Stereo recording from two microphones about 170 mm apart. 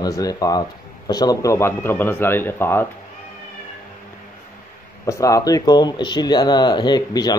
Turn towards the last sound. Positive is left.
turn(degrees=25)  # may be behind; listen again after turning